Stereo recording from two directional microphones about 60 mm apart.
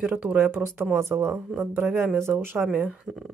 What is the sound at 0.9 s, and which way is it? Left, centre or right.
Speech, right.